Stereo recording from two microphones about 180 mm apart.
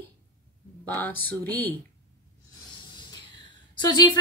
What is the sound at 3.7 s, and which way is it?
Speech, 25° left (ahead or behind).